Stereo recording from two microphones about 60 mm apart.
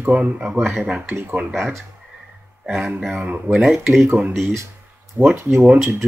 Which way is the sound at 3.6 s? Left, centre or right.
Centre.